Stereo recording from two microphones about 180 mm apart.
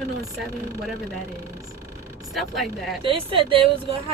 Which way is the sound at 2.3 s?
Centre (ahead or behind).